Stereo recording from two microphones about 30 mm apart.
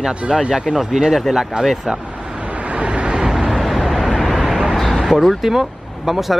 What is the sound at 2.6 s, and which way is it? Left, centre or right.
Vehicle, right.